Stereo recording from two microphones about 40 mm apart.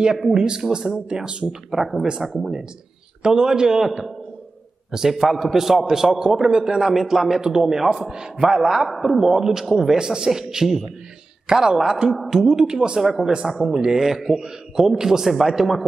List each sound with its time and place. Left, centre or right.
0.0 s speech: centre
1.7 s a man's voice: centre
5.1 s a man's voice: centre
8.8 s a man's voice: centre
12.2 s a man's voice: centre
13.0 s a man's voice: centre